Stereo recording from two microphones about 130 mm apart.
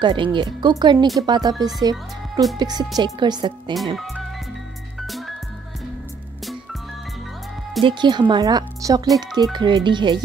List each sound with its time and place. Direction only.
0.0 s speech: 35° right (ahead or behind)
3.7 s speech: centre (ahead or behind)
5.0 s music: centre (ahead or behind)
7.8 s speech: 35° right (ahead or behind)